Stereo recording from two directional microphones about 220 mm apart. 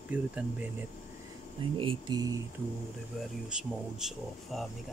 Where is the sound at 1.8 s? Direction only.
20° right (ahead or behind).